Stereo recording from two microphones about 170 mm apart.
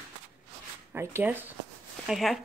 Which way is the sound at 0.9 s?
15° right (ahead or behind).